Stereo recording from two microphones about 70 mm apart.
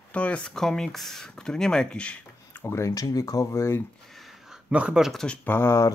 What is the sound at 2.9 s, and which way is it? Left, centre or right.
Speech, left.